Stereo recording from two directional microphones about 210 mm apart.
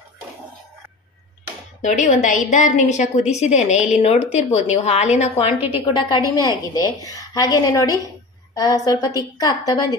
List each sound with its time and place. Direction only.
1.8 s a woman's voice: 35° left (ahead or behind)
5.8 s a woman's voice: 20° left (ahead or behind)